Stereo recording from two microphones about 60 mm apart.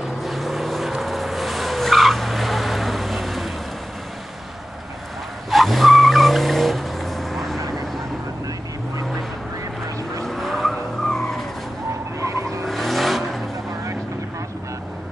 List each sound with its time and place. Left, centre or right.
0.2 s vehicle: centre
5.5 s vehicle: centre
10.2 s vehicle: centre
12.2 s vehicle: right
12.6 s vehicle: centre